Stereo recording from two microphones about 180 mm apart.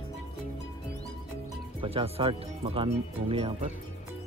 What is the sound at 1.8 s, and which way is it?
Speech, 30° right (ahead or behind).